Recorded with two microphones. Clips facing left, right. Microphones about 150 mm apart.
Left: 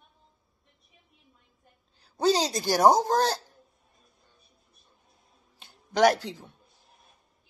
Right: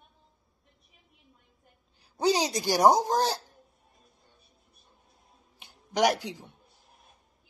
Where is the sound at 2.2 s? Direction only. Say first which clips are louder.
Left 1 dB; 15° right (ahead or behind).